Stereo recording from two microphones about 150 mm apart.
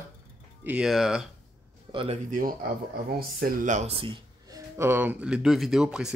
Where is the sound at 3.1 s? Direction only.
90° right.